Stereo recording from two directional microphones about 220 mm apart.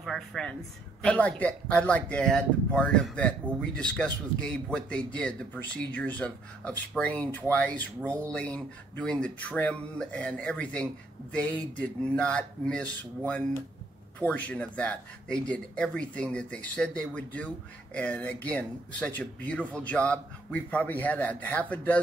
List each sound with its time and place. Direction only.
0.0 s speech: centre (ahead or behind)
8.0 s speech: 10° right (ahead or behind)
8.3 s speech: 5° left (ahead or behind)
14.2 s speech: 5° left (ahead or behind)